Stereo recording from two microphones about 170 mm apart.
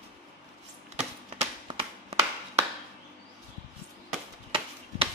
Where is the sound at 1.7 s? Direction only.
35° right (ahead or behind).